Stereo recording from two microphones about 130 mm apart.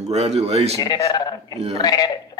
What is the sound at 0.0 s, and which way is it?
Speech, 55° right (ahead or behind).